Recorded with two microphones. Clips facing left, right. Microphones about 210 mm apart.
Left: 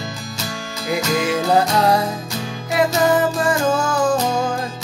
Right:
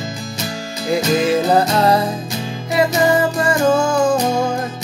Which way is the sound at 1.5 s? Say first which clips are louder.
Right 2 dB; centre (ahead or behind).